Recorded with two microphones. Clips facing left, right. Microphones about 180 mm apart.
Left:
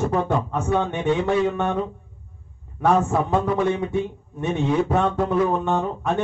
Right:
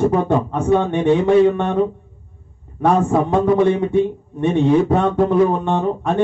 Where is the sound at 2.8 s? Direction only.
15° right (ahead or behind).